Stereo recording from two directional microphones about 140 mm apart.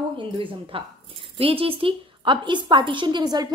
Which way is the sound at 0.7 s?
40° right (ahead or behind).